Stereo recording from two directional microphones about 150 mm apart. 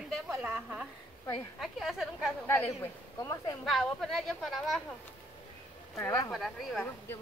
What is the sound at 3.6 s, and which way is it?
A woman's voice, centre (ahead or behind).